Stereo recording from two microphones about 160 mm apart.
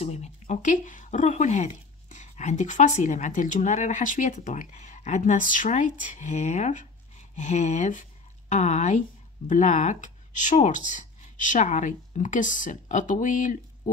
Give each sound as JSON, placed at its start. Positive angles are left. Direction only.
{"t": 0.0, "sound": "a woman's voice", "side_deg": 45}